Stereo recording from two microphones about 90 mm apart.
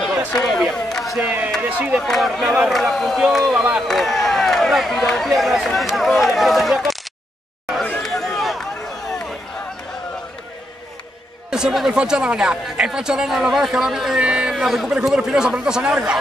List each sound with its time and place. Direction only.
0.4 s speech: 5° left (ahead or behind)
0.7 s a sound: 5° left (ahead or behind)
1.6 s speech: 15° right (ahead or behind)
2.0 s speech: centre (ahead or behind)
8.0 s run: 5° left (ahead or behind)
11.5 s speech: 5° right (ahead or behind)